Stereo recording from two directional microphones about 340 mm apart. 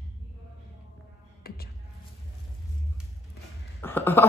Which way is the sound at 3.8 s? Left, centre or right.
Centre.